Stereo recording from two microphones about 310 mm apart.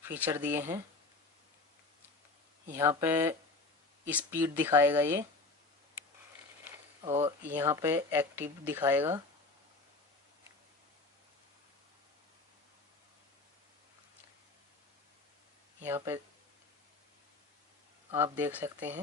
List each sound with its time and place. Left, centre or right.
0.0 s speech: centre
2.7 s speech: centre
6.7 s a sound: centre
7.4 s speech: centre
15.8 s speech: centre
18.1 s speech: centre